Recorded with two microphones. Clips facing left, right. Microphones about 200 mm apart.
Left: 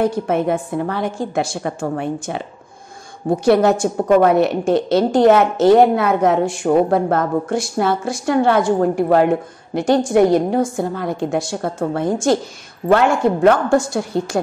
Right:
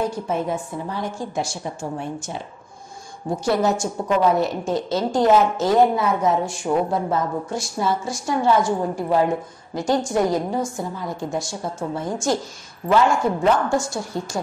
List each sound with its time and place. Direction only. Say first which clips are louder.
0.3 s a woman's voice: left 6 dB; 65° left (ahead or behind)